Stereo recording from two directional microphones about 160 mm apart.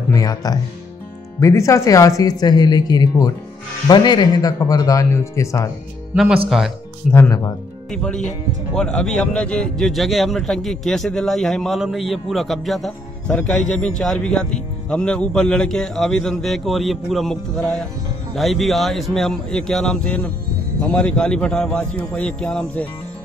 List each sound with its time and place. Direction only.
0.1 s speech: 25° left (ahead or behind)
6.1 s a man's voice: 5° right (ahead or behind)
7.1 s a man's voice: 15° left (ahead or behind)
7.9 s a man's voice: 5° left (ahead or behind)